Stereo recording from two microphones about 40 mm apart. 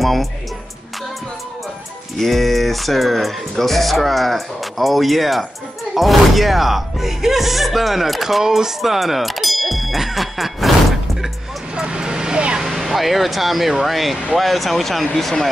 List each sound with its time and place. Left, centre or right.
0.0 s speech: centre
2.1 s speech: centre
11.7 s vehicle: centre
12.5 s speech: centre